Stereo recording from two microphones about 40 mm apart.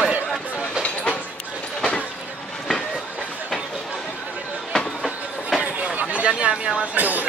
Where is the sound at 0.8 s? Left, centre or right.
Left.